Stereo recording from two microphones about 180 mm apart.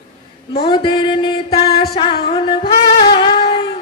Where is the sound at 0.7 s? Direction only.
25° left (ahead or behind).